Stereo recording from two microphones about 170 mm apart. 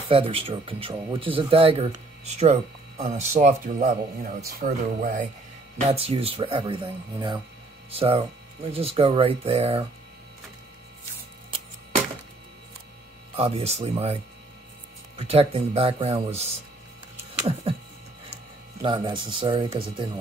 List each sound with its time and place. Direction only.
0.1 s speech: 35° right (ahead or behind); by 5.2 s 50° right (ahead or behind)
5.9 s speech: 35° right (ahead or behind)
13.4 s speech: 35° right (ahead or behind)
15.1 s speech: 35° right (ahead or behind)
18.8 s speech: 25° right (ahead or behind)